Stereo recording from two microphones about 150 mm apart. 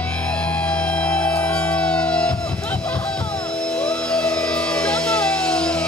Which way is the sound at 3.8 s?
5° left (ahead or behind).